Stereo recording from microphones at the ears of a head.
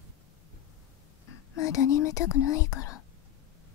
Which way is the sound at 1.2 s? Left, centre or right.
Left.